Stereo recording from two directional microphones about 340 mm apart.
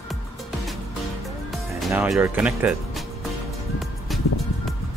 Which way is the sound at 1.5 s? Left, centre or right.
Centre.